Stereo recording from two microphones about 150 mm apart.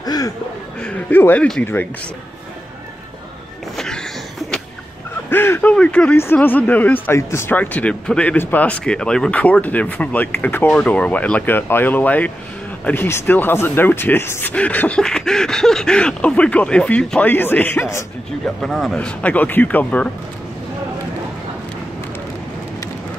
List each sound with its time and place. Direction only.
0.0 s chuckle: 25° left (ahead or behind)
0.7 s speech: 10° left (ahead or behind)
3.7 s a sound: 5° left (ahead or behind)
5.3 s speech: 15° left (ahead or behind)
18.6 s speech: centre (ahead or behind)